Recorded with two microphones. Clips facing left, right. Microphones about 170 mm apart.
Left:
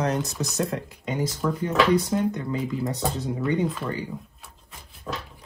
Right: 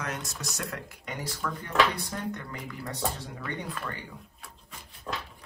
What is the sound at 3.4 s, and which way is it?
Speech, centre (ahead or behind).